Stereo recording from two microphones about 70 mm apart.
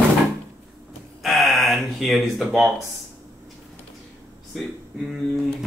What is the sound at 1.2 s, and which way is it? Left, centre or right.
Speech, centre.